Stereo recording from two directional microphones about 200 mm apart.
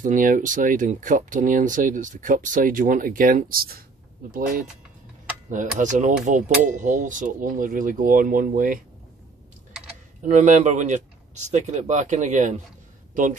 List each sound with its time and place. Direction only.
0.0 s speech: 40° right (ahead or behind)
5.8 s speech: 40° right (ahead or behind)
10.2 s speech: 35° right (ahead or behind)